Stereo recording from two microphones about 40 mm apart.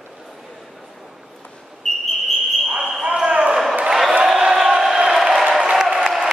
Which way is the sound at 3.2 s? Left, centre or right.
Right.